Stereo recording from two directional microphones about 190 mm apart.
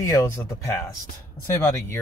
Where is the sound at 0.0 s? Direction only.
15° left (ahead or behind).